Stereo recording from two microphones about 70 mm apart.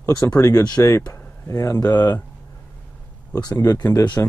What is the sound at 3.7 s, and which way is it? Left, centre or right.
Speech, left.